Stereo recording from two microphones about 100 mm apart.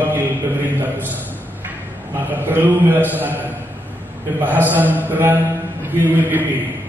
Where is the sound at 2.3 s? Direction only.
20° right (ahead or behind).